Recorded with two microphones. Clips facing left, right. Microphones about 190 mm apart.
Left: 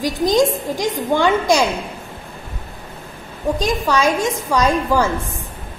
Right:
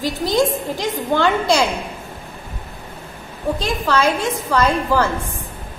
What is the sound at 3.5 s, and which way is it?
A woman's voice, 15° left (ahead or behind).